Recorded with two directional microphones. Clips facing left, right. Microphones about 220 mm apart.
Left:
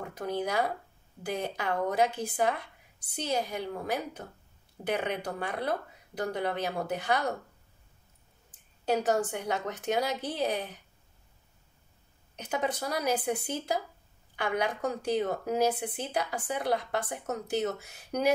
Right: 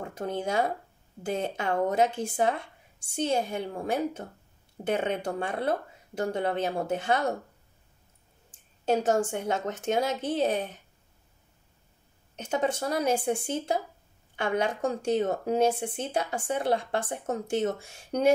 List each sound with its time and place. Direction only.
0.1 s speech: 25° right (ahead or behind)
8.5 s speech: 25° right (ahead or behind)
12.4 s speech: 25° right (ahead or behind)